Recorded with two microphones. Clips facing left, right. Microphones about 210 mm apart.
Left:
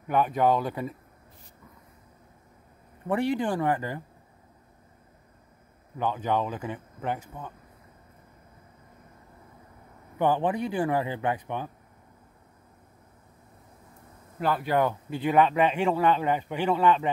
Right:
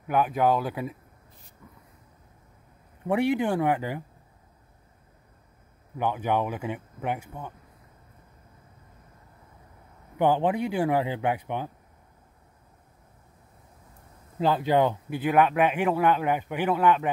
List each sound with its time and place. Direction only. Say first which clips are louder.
0.0 s speech: even; centre (ahead or behind)
3.1 s speech: right 2 dB; 10° right (ahead or behind)
5.9 s speech: right 1 dB; 10° right (ahead or behind)
10.1 s speech: right 2 dB; 15° right (ahead or behind)
14.4 s speech: right 3 dB; 25° right (ahead or behind)
15.1 s speech: even; 5° right (ahead or behind)